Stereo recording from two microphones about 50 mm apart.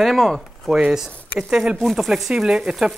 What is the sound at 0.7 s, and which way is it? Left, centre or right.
Speech, centre.